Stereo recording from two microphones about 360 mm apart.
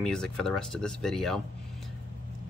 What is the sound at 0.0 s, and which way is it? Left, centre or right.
Speech, centre.